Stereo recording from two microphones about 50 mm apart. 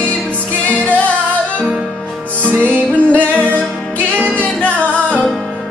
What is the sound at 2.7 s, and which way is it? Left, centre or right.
Music, right.